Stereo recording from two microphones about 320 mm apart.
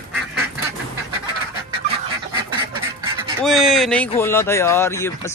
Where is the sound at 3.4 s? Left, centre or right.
Centre.